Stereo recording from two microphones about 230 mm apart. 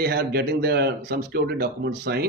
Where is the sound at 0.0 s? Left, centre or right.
Right.